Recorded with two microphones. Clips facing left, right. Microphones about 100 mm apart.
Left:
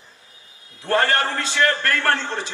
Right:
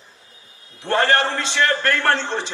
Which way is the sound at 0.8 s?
25° right (ahead or behind).